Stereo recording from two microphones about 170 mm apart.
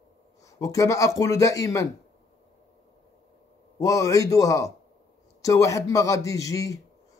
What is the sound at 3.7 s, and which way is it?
Speech, 20° left (ahead or behind).